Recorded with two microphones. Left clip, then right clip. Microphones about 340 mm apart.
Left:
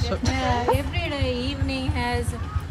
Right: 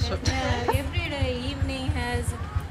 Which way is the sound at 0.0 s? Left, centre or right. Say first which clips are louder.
Left 3 dB; centre.